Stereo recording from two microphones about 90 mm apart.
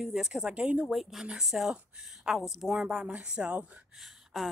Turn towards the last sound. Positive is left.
turn(degrees=0)  # may be behind; listen again after turning